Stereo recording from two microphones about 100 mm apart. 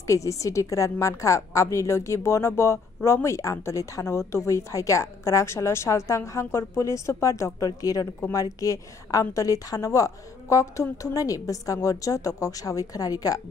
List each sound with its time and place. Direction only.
0.0 s a woman's voice: 30° left (ahead or behind)